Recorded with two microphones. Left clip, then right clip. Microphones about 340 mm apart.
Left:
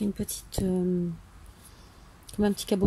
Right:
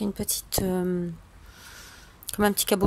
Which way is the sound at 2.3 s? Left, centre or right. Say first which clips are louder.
Right 4 dB; centre.